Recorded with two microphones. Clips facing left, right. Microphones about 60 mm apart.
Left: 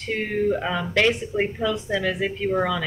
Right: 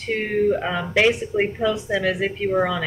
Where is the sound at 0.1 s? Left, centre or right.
Centre.